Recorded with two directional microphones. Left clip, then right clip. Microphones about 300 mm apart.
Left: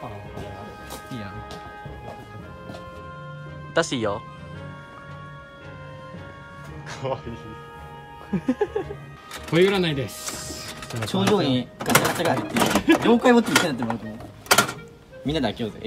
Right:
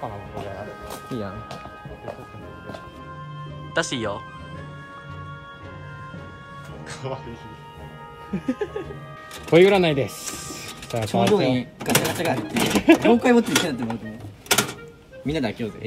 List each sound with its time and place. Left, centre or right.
3.7 s music: centre
6.9 s music: centre
8.3 s music: centre
9.5 s speech: centre
15.2 s music: centre